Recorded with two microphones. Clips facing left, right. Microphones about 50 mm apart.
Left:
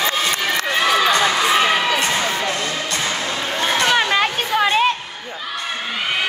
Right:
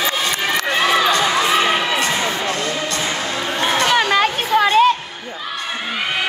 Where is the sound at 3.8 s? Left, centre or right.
Centre.